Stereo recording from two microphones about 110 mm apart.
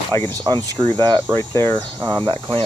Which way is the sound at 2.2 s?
50° right (ahead or behind).